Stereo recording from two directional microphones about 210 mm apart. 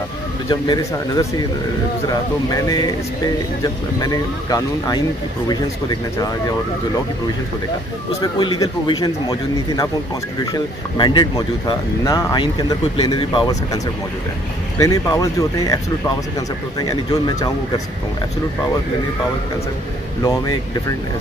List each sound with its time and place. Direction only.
0.5 s speech: 20° left (ahead or behind)
8.2 s speech: 20° left (ahead or behind)
14.8 s speech: 15° left (ahead or behind)
16.8 s speech: 15° left (ahead or behind)